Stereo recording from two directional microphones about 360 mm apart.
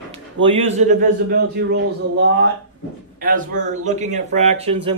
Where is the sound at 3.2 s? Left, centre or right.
Right.